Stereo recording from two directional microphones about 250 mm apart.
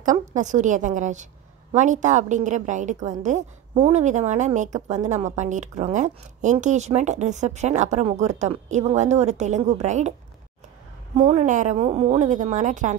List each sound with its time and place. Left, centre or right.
0.0 s a woman's voice: right
11.1 s a woman's voice: right